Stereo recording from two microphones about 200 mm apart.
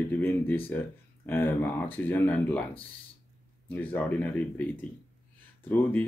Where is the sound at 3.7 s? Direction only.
10° left (ahead or behind).